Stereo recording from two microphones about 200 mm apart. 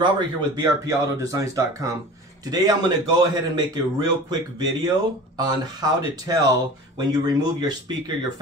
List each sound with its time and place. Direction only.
0.0 s speech: 20° right (ahead or behind)